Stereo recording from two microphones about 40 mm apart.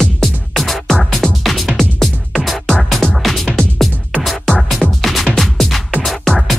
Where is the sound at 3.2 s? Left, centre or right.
Centre.